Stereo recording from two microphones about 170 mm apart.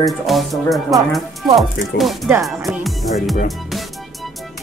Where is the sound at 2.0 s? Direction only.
80° left.